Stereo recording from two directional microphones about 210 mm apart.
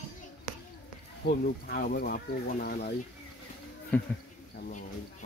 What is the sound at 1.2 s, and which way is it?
Speech, 45° left (ahead or behind).